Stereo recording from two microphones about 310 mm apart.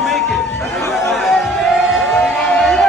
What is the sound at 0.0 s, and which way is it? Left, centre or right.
Chatter, centre.